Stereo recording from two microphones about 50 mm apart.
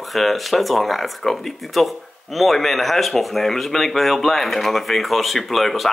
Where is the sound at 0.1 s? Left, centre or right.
Centre.